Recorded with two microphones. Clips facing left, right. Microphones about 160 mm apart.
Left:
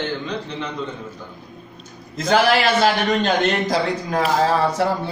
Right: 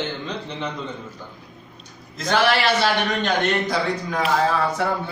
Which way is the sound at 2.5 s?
40° left (ahead or behind).